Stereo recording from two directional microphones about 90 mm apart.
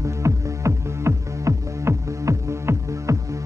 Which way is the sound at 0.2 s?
35° right (ahead or behind).